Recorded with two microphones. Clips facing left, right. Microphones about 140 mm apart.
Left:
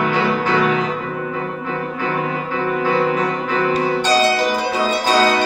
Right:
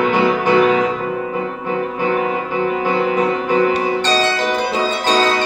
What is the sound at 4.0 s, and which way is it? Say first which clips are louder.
Music: left 1 dB; 10° left (ahead or behind).